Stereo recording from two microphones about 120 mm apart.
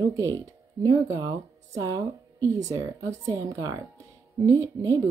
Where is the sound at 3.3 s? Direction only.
25° right (ahead or behind).